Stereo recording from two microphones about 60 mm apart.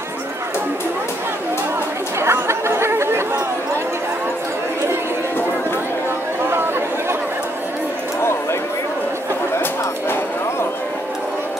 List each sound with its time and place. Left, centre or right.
2.1 s chatter: right
6.5 s chatter: right